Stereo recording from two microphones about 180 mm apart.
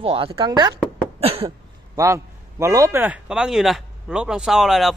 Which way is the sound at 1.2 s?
35° right (ahead or behind).